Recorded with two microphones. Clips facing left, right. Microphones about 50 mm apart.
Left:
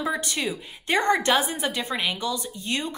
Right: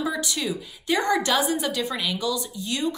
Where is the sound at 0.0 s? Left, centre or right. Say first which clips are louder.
Even; left.